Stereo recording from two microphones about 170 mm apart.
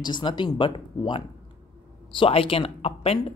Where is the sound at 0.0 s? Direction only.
25° left (ahead or behind).